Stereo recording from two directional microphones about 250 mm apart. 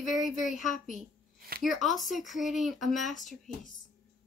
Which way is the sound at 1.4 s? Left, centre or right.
Right.